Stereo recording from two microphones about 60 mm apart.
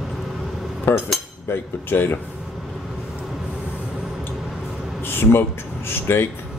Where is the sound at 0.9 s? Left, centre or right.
Left.